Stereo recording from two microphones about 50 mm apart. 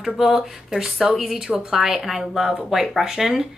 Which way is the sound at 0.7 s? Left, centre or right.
Centre.